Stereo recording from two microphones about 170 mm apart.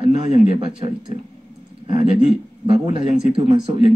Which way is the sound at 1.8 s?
35° right (ahead or behind).